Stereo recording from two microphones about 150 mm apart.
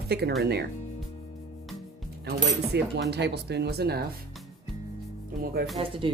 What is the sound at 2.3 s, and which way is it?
Speech, 90° right.